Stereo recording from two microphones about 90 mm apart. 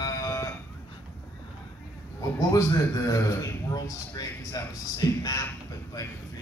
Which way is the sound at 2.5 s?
40° left (ahead or behind).